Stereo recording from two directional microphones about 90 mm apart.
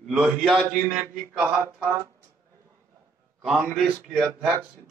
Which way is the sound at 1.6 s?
20° right (ahead or behind).